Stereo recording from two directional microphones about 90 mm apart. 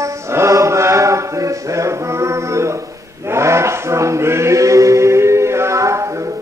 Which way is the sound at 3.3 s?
30° right (ahead or behind).